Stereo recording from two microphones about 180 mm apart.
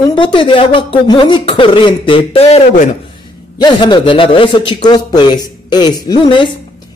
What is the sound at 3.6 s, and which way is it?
Speech, 25° left (ahead or behind).